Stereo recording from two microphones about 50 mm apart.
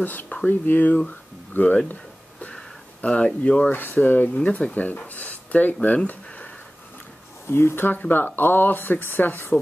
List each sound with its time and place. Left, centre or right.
0.0 s speech: left
2.4 s a sound: left
3.7 s speech: left
4.4 s speech: left
7.4 s speech: left